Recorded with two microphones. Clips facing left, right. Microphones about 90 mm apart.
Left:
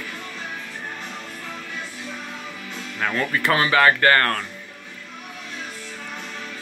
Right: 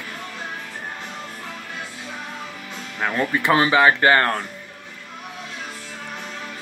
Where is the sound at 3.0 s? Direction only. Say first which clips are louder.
Right 1 dB; 20° right (ahead or behind).